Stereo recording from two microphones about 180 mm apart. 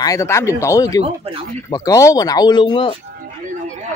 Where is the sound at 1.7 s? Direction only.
20° left (ahead or behind).